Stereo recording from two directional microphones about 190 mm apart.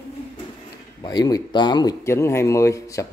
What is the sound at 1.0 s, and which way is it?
Speech, 20° left (ahead or behind).